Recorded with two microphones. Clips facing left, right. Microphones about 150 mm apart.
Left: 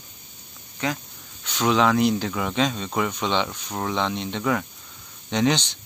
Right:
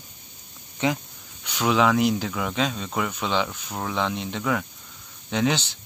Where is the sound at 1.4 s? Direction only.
10° right (ahead or behind).